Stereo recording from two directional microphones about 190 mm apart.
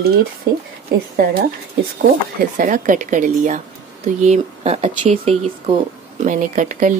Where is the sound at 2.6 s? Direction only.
45° right (ahead or behind).